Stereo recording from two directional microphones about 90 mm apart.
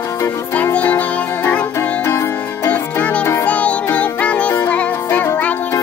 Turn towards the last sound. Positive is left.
turn(degrees=20)  # may be behind; listen again after turning